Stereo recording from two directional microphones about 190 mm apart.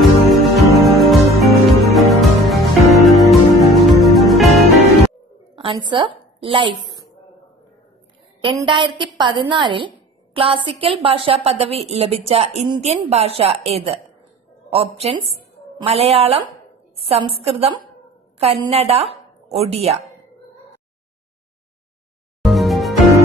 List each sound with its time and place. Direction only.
0.0 s music: centre (ahead or behind)
5.6 s a woman's voice: 25° right (ahead or behind)
8.6 s a woman's voice: 25° right (ahead or behind)
22.4 s music: centre (ahead or behind)